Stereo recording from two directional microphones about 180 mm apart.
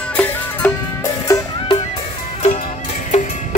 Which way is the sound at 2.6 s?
40° left (ahead or behind).